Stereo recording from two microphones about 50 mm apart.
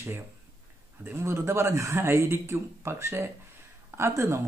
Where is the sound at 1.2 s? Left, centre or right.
Right.